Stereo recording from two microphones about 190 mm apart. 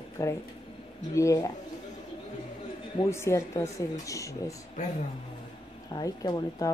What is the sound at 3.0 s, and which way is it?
A woman's voice, 15° left (ahead or behind).